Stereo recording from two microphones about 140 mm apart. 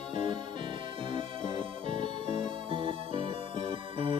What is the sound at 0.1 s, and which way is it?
Music, 40° right (ahead or behind).